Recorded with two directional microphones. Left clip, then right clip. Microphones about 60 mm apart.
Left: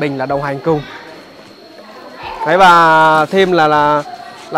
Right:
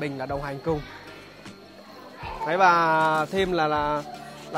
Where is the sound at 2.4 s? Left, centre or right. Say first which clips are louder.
Left 12 dB; left.